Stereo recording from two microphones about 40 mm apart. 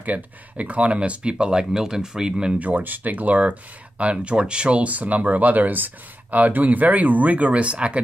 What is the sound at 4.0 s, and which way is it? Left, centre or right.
Speech, right.